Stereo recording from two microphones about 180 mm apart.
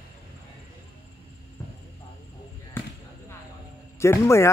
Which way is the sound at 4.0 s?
15° left (ahead or behind).